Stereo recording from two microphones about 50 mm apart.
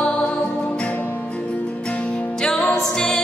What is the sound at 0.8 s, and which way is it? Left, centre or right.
Music, left.